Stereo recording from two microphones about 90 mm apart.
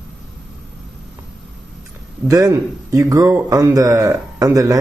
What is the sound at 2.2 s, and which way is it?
Speech, 40° right (ahead or behind).